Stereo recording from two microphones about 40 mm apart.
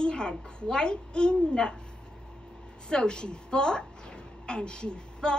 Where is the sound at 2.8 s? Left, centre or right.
Left.